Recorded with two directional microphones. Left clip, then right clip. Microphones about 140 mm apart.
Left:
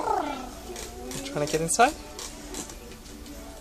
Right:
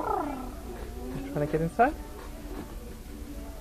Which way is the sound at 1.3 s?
30° left (ahead or behind).